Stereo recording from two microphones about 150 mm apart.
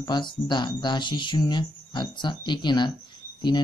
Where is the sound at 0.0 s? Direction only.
30° left (ahead or behind).